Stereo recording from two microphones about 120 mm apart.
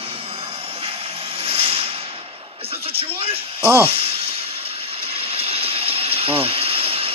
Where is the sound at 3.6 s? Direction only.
15° right (ahead or behind).